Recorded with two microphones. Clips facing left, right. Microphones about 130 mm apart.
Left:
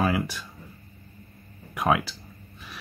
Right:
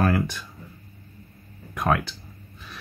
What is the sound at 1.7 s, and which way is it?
Speech, 10° left (ahead or behind).